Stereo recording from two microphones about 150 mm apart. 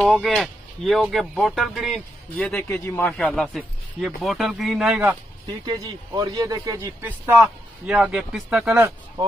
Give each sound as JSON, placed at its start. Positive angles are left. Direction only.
{"t": 0.2, "sound": "speech", "side_deg": 0}
{"t": 2.5, "sound": "speech", "side_deg": 15}
{"t": 3.1, "sound": "speech", "side_deg": 5}
{"t": 5.7, "sound": "speech", "side_deg": -25}
{"t": 7.1, "sound": "speech", "side_deg": -10}
{"t": 8.7, "sound": "speech", "side_deg": -20}